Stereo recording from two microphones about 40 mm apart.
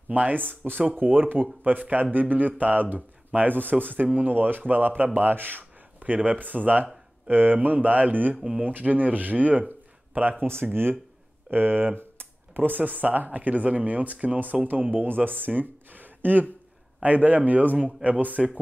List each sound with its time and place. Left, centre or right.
0.1 s speech: right
3.3 s speech: right
3.6 s speech: right
10.4 s speech: right
18.4 s speech: centre